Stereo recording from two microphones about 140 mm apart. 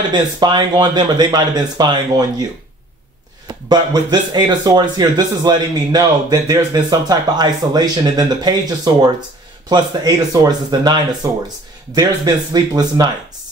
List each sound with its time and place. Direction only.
0.1 s speech: 30° right (ahead or behind)
3.4 s speech: 30° right (ahead or behind)
12.5 s speech: 30° right (ahead or behind)